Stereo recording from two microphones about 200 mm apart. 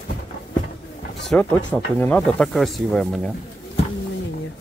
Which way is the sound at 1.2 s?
5° left (ahead or behind).